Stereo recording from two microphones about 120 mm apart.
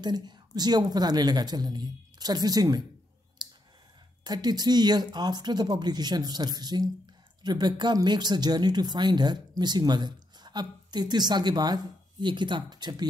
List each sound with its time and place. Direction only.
0.0 s a woman's voice: 35° right (ahead or behind)
3.4 s clicking: 35° right (ahead or behind)
4.2 s a woman's voice: 35° right (ahead or behind)